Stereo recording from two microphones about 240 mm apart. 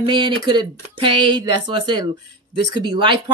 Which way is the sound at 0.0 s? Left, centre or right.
Centre.